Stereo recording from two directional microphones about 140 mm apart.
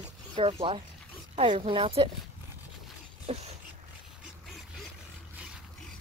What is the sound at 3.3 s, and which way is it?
Speech, 45° right (ahead or behind).